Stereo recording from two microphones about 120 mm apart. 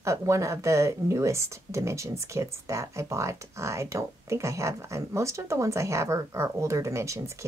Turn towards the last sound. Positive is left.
turn(degrees=-25)  # may be behind; listen again after turning